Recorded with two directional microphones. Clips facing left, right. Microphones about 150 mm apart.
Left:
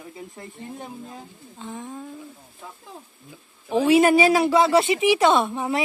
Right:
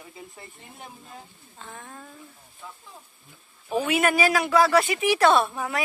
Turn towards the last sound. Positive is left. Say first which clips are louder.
# left 1 dB
turn(degrees=20)  # may be behind; listen again after turning